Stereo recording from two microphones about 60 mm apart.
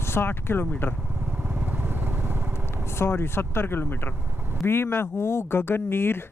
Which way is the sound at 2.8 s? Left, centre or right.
Left.